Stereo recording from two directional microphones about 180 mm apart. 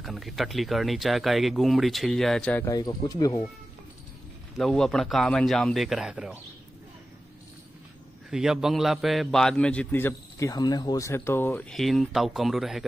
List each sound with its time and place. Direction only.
0.0 s speech: centre (ahead or behind)
2.6 s speech: 20° left (ahead or behind)
4.6 s speech: centre (ahead or behind)
8.3 s a man's voice: centre (ahead or behind)
11.7 s speech: centre (ahead or behind)